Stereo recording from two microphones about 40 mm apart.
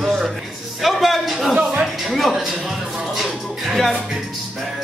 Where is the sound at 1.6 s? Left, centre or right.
Right.